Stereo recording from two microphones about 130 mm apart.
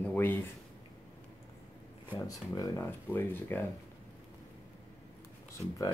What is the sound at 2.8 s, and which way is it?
Speech, 15° left (ahead or behind).